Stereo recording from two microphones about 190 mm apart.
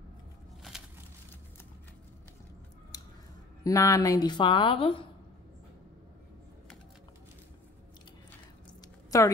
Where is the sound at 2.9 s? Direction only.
20° left (ahead or behind).